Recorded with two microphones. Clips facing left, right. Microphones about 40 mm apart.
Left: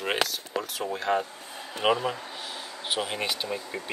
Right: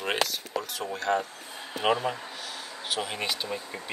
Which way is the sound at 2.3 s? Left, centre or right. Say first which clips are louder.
Left 1 dB; left.